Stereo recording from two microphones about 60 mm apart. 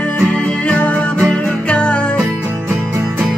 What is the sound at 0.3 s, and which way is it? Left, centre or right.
Music, centre.